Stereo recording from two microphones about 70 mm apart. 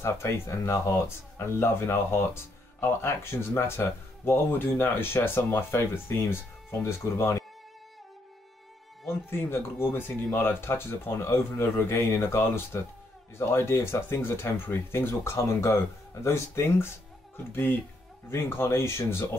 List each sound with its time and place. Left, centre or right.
0.0 s speech: left
9.0 s speech: left
18.3 s speech: left